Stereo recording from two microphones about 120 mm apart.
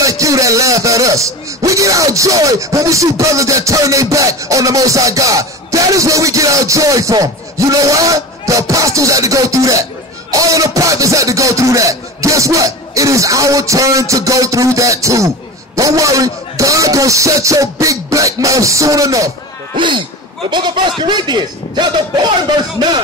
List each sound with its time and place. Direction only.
0.0 s speech: 25° right (ahead or behind)
19.7 s a man's voice: 45° right (ahead or behind)